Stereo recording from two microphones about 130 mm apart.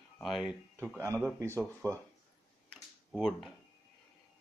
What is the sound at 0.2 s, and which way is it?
Speech, centre (ahead or behind).